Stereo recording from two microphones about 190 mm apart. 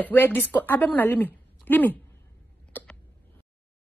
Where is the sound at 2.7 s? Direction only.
5° left (ahead or behind).